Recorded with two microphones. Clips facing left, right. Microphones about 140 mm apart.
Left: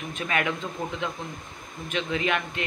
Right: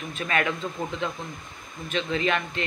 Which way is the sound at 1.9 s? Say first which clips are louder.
Right 1 dB; 10° left (ahead or behind).